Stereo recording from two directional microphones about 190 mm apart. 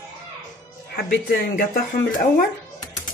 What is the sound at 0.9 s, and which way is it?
Speech, 55° left (ahead or behind).